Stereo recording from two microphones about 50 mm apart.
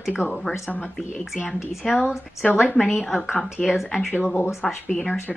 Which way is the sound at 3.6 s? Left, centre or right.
Centre.